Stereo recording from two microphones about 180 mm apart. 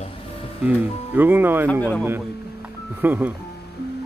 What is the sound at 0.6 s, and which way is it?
Speech, 10° right (ahead or behind).